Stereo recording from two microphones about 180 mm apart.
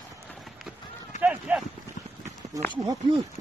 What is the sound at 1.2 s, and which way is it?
Speech, 5° right (ahead or behind).